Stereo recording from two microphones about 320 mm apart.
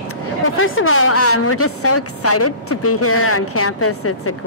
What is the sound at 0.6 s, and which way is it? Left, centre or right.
A woman's voice, left.